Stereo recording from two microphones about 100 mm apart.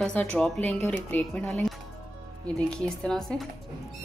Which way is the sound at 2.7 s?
5° left (ahead or behind).